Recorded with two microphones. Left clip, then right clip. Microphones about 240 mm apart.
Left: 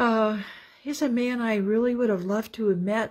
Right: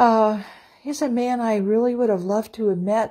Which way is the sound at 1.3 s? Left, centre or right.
Centre.